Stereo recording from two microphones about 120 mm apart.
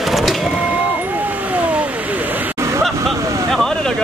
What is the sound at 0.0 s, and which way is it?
Vehicle, centre (ahead or behind).